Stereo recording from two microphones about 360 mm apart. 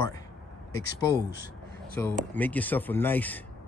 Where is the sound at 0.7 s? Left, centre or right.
Centre.